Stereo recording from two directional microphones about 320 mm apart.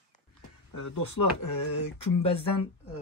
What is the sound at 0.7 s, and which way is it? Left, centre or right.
Speech, left.